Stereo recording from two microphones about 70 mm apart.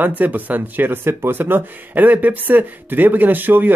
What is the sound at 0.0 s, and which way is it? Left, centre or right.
Speech, right.